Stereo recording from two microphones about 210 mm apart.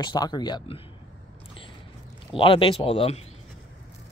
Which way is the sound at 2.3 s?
25° left (ahead or behind).